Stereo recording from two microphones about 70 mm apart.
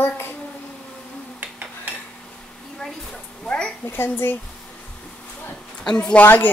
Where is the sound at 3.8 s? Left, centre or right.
Left.